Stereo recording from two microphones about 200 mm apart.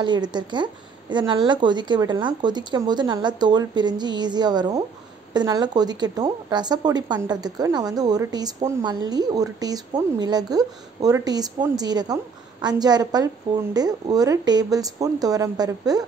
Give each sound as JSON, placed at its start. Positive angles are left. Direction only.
{"t": 0.0, "sound": "a woman's voice", "side_deg": -20}